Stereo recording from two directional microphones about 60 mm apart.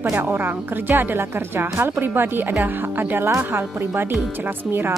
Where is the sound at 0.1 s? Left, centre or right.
Right.